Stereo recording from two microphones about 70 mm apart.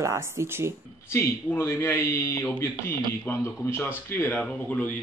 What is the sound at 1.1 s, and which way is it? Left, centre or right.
Speech, left.